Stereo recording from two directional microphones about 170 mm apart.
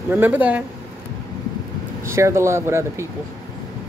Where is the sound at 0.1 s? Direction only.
10° right (ahead or behind).